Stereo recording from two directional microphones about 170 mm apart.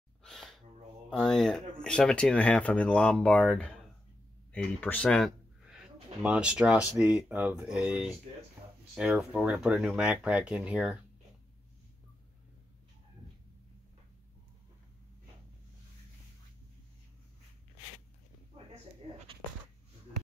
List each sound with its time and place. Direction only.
0.2 s gasp: centre (ahead or behind)
1.1 s speech: 5° left (ahead or behind)
19.0 s a sound: 40° right (ahead or behind)